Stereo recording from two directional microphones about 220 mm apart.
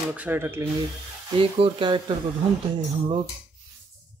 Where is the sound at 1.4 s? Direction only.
25° right (ahead or behind).